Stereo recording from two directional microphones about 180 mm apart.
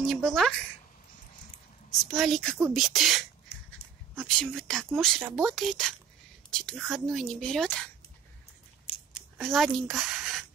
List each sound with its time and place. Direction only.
0.0 s speech: centre (ahead or behind)
2.0 s speech: centre (ahead or behind)
4.4 s speech: 5° left (ahead or behind)
9.4 s speech: centre (ahead or behind)